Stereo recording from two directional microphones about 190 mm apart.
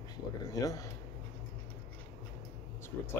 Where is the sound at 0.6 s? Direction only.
20° left (ahead or behind).